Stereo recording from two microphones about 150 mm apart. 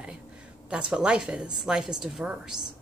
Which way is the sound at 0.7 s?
5° right (ahead or behind).